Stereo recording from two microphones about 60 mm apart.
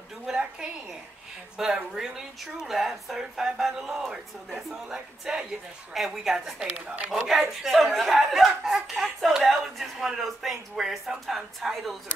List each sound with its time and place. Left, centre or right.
0.3 s a woman's voice: centre
1.6 s speech: centre
6.7 s speech: right
7.2 s speech: centre